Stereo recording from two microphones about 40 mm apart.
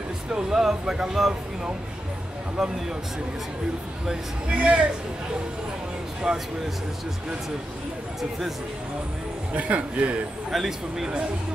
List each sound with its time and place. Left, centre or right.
0.3 s speech: centre
4.5 s a man's voice: right
6.2 s speech: right
8.2 s speech: centre
9.5 s a man's voice: right
10.5 s speech: centre